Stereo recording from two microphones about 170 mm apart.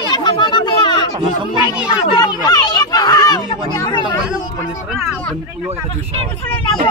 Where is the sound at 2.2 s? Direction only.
25° left (ahead or behind).